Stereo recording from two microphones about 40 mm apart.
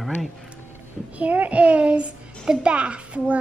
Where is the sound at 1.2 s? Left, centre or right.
Right.